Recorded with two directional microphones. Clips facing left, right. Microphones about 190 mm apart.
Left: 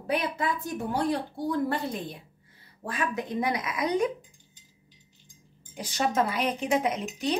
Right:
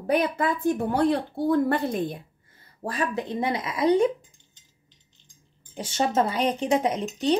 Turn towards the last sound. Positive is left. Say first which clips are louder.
# right 4 dB
turn(degrees=-30)  # may be behind; listen again after turning